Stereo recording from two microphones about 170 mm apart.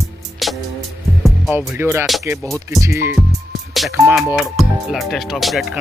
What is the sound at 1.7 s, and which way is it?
Speech, 15° right (ahead or behind).